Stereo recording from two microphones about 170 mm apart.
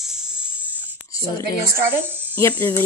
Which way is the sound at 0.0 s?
5° right (ahead or behind).